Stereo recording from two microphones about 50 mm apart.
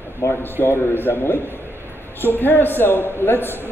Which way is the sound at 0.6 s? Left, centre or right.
Left.